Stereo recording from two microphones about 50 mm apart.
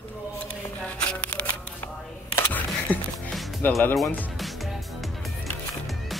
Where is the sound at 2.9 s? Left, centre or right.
Left.